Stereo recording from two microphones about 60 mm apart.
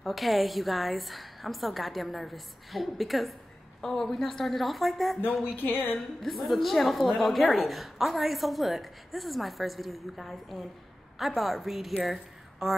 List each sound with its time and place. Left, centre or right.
0.0 s a woman's voice: centre
5.6 s speech: left
6.2 s a woman's voice: centre